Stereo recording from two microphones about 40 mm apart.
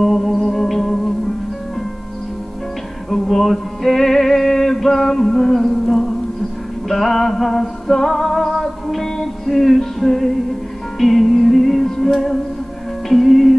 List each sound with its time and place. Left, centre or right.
0.0 s music: centre
3.1 s music: centre
13.1 s music: centre